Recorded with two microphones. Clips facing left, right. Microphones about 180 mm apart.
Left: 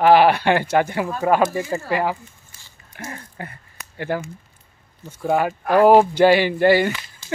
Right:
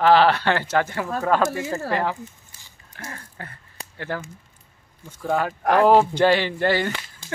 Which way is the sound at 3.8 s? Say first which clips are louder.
Right 4 dB; 30° right (ahead or behind).